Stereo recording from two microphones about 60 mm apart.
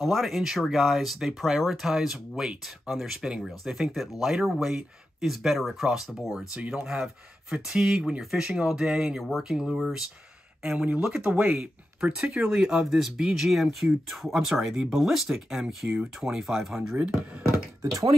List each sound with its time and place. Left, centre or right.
0.0 s speech: centre
10.6 s speech: centre
15.2 s speech: centre